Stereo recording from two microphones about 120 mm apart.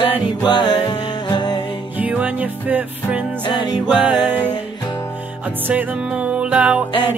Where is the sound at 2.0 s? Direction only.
15° right (ahead or behind).